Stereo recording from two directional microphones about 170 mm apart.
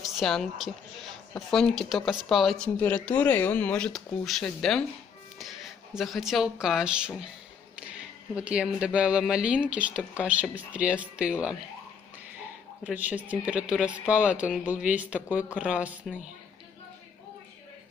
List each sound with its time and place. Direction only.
0.0 s a woman's voice: centre (ahead or behind)
8.4 s speech: 5° right (ahead or behind)
12.8 s speech: 10° right (ahead or behind)